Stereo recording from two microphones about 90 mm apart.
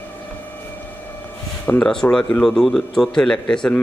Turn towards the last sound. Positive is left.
turn(degrees=10)  # may be behind; listen again after turning